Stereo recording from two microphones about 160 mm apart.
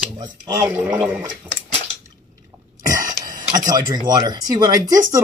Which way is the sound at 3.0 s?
25° right (ahead or behind).